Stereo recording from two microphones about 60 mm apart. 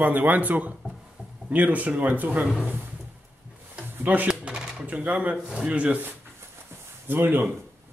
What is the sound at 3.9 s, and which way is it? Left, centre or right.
Speech, right.